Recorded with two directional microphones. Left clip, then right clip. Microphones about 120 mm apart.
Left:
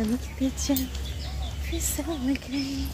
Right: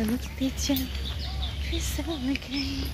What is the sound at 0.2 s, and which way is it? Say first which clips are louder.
Speech: left 1 dB; 20° left (ahead or behind).